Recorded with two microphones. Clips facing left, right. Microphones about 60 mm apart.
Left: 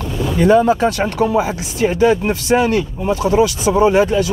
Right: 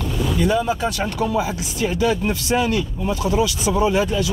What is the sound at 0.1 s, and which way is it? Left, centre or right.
Vehicle, centre.